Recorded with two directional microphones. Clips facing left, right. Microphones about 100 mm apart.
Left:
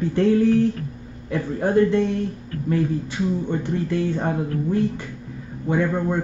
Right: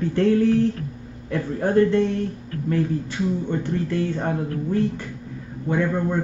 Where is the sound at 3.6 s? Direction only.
15° left (ahead or behind).